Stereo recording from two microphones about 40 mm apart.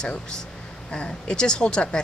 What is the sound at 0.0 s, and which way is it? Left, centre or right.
Speech, left.